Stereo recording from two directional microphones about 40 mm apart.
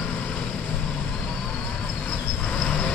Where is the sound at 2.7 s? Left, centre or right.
Left.